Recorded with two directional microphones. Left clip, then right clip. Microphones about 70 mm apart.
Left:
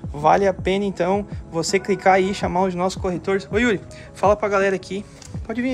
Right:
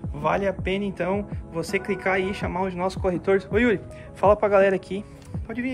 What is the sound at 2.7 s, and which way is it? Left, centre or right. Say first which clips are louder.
Speech: left 4 dB; left.